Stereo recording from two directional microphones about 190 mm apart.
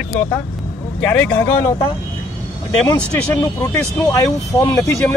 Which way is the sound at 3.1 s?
5° left (ahead or behind).